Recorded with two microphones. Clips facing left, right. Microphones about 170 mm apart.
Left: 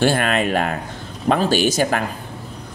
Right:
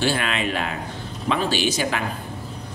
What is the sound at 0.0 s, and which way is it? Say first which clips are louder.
Speech: left 5 dB; 50° left (ahead or behind).